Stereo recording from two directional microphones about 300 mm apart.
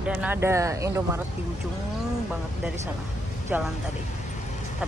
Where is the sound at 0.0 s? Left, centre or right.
Centre.